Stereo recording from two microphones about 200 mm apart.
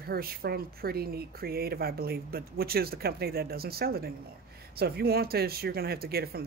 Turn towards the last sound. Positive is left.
turn(degrees=-50)  # may be behind; listen again after turning